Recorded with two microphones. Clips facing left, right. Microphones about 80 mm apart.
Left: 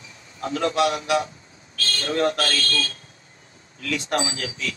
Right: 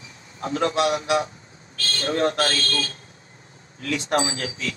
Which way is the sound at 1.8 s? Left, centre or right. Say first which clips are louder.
Even; right.